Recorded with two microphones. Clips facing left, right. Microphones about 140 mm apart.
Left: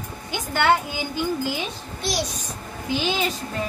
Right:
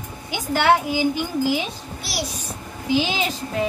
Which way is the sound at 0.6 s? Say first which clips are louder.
Right 3 dB; 90° right.